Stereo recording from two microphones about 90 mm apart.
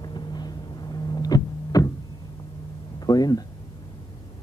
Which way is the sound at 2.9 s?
45° left (ahead or behind).